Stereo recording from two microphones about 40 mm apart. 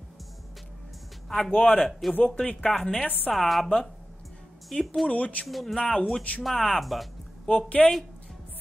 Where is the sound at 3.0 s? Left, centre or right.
Left.